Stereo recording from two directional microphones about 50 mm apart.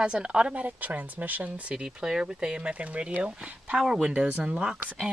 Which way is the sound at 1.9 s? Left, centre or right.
Centre.